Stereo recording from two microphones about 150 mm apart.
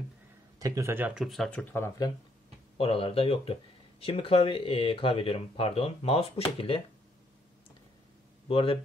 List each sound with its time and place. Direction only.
0.6 s speech: 20° right (ahead or behind); by 1.9 s 10° left (ahead or behind)
2.8 s speech: 40° left (ahead or behind)
8.5 s speech: 40° left (ahead or behind)